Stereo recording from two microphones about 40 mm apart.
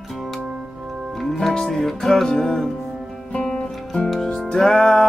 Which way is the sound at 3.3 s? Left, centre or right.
Centre.